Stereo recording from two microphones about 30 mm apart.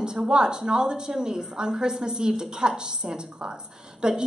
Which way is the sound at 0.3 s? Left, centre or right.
Right.